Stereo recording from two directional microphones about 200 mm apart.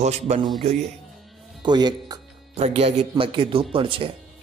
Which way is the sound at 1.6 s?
20° right (ahead or behind).